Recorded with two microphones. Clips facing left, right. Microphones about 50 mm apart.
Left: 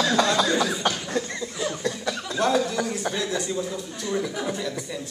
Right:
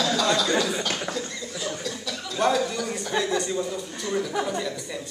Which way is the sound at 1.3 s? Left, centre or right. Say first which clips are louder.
Left 3 dB; left.